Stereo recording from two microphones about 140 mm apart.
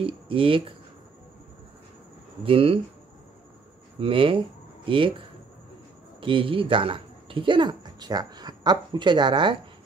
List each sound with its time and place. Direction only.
0.0 s speech: 40° right (ahead or behind)
2.4 s speech: 40° right (ahead or behind)
4.0 s speech: 40° right (ahead or behind)
6.2 s speech: 40° right (ahead or behind)